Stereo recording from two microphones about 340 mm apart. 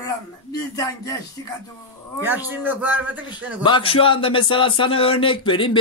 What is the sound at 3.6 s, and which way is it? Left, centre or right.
Speech, centre.